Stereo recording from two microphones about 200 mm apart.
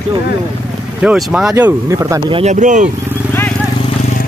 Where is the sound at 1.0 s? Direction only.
5° right (ahead or behind).